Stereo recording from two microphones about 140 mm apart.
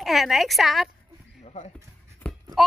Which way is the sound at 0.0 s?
Centre (ahead or behind).